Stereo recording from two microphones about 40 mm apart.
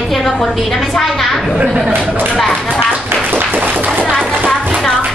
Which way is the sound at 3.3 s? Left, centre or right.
Right.